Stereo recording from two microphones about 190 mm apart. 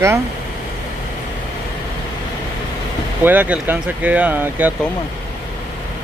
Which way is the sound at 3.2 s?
10° right (ahead or behind).